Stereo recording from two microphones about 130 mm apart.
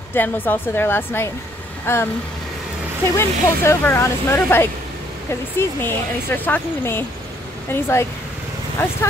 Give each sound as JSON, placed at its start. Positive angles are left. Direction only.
{"t": 0.1, "sound": "speech", "side_deg": 15}
{"t": 3.2, "sound": "speech", "side_deg": 20}